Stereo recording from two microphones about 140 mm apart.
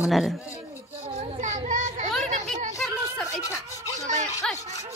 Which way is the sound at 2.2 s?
60° right (ahead or behind).